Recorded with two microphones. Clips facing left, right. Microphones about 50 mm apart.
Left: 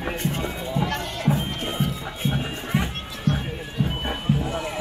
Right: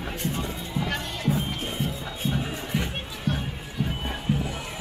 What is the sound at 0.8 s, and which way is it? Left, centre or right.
Music, centre.